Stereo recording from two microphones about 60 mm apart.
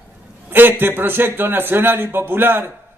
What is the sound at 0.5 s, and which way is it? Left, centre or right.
A man's voice, right.